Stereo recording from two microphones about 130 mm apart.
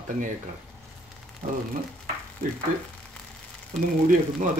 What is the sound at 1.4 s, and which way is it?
Speech, 55° right (ahead or behind).